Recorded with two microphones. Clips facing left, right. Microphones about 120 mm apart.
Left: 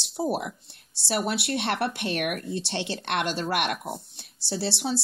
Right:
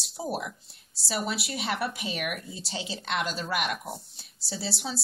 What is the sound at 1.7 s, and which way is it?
Speech, centre (ahead or behind).